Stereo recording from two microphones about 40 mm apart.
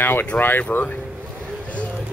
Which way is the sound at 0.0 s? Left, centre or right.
Left.